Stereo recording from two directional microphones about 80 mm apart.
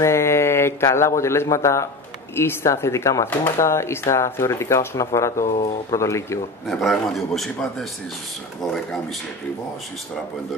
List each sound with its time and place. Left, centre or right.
0.0 s speech: left
6.7 s a man's voice: centre